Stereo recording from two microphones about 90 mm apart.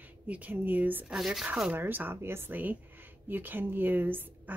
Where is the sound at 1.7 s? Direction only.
20° right (ahead or behind).